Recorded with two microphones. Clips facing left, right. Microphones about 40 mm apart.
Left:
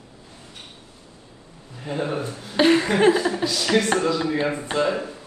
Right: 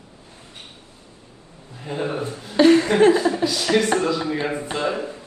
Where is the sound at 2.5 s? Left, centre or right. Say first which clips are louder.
Right 3 dB; left.